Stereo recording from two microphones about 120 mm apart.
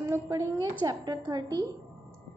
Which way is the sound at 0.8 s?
35° right (ahead or behind).